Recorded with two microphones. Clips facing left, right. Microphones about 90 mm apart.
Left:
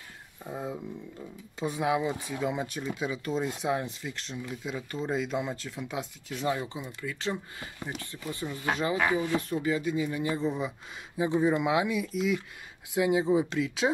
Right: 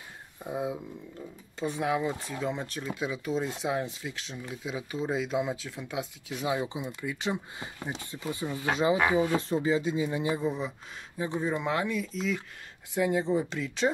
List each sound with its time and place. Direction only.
0.4 s speech: 10° right (ahead or behind)
10.4 s speech: centre (ahead or behind)
11.1 s speech: 15° left (ahead or behind)